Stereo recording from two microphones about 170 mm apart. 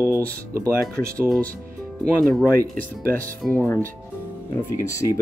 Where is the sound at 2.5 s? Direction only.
55° right (ahead or behind).